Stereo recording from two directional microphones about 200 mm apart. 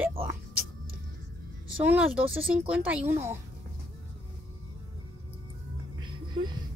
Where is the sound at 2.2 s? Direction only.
30° right (ahead or behind).